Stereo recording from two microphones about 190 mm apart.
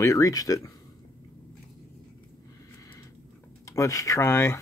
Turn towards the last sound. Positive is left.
turn(degrees=15)  # may be behind; listen again after turning